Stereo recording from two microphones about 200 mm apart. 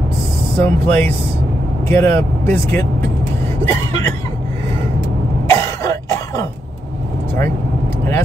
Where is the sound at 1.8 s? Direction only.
15° left (ahead or behind).